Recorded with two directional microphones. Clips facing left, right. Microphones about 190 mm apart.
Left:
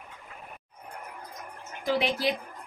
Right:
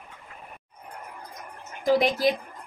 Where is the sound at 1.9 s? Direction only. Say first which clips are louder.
Right 4 dB; 40° right (ahead or behind).